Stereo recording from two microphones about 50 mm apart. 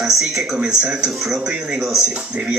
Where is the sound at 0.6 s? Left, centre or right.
Centre.